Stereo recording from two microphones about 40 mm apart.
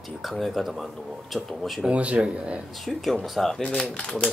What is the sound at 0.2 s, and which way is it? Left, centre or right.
Speech, centre.